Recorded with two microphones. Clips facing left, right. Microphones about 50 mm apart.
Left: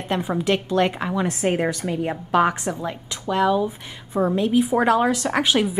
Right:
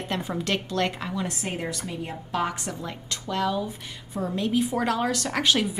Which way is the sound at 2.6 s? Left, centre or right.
Centre.